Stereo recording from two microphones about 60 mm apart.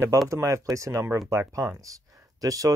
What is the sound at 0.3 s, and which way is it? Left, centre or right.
Speech, right.